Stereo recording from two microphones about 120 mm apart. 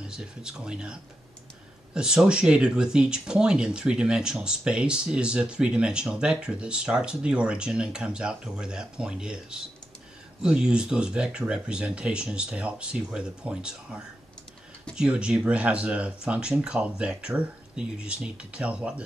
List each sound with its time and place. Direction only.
0.1 s speech: 5° right (ahead or behind)
2.0 s speech: 5° right (ahead or behind)